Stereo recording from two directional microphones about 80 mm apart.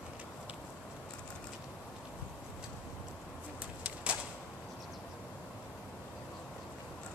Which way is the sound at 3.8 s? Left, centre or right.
Centre.